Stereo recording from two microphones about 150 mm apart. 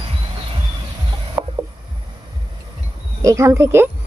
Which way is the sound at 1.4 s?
20° right (ahead or behind).